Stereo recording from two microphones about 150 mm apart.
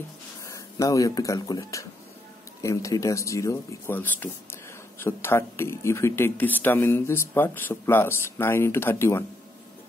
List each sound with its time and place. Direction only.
0.5 s speech: 20° left (ahead or behind)